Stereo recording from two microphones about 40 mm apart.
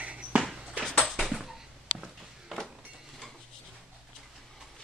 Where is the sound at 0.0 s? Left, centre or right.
Right.